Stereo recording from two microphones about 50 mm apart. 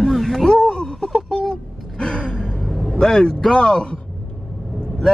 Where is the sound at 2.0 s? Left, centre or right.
Centre.